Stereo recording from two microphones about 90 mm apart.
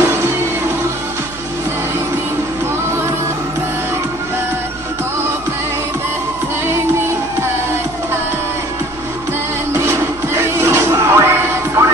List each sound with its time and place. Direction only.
0.0 s music: 30° right (ahead or behind)
9.8 s music: 30° right (ahead or behind)